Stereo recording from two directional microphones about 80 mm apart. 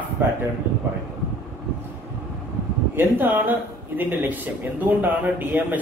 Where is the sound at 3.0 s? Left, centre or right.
Right.